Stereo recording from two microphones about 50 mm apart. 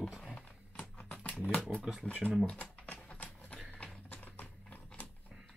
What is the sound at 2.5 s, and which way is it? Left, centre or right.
Typing, left.